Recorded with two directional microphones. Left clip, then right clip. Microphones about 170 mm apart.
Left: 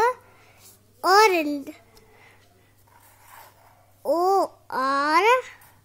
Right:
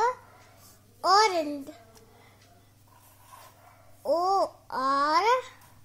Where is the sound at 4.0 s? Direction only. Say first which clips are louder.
Left 4 dB; 55° left (ahead or behind).